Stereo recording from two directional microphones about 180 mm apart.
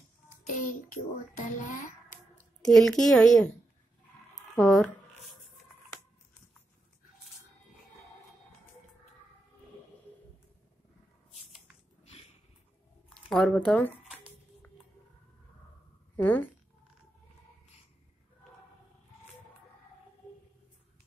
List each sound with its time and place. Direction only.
0.5 s child singing: 40° left (ahead or behind)
2.0 s a sound: 5° left (ahead or behind)
4.6 s speech: 5° left (ahead or behind)
13.1 s speech: centre (ahead or behind)
16.2 s speech: 10° left (ahead or behind)